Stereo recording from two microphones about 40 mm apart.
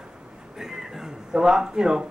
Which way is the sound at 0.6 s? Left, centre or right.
Centre.